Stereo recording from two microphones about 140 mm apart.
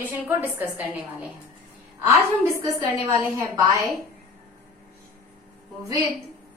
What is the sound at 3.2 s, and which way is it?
Speech, 20° right (ahead or behind).